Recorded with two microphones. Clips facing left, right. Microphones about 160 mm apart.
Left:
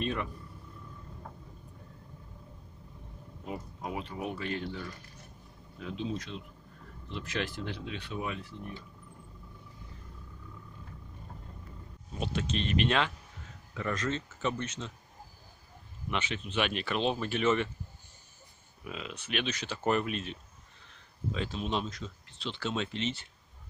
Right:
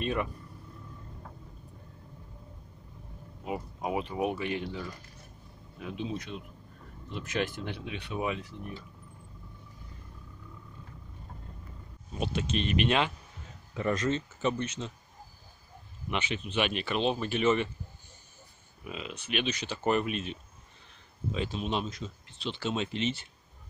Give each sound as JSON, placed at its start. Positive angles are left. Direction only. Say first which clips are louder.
{"t": 3.8, "sound": "speech", "louder": "right 7 dB", "side_deg": -15}
{"t": 5.8, "sound": "speech", "louder": "even", "side_deg": -15}
{"t": 7.1, "sound": "speech", "louder": "right 3 dB", "side_deg": -50}
{"t": 7.8, "sound": "speech", "louder": "right 7 dB", "side_deg": -15}
{"t": 12.2, "sound": "speech", "louder": "right 2 dB", "side_deg": -10}
{"t": 16.1, "sound": "speech", "louder": "right 1 dB", "side_deg": -5}
{"t": 18.9, "sound": "speech", "louder": "right 2 dB", "side_deg": -5}